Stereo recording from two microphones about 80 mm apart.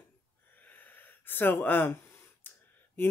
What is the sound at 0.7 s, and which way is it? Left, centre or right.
Gasp, left.